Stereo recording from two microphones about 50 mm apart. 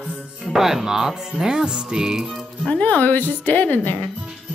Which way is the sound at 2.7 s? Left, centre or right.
Left.